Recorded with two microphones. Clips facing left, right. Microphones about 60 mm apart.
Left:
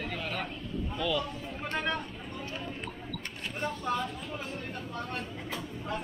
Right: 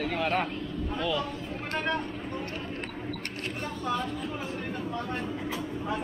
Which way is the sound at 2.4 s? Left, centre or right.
Right.